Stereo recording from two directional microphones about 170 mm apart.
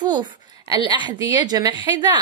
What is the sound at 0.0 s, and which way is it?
A woman's voice, 25° right (ahead or behind).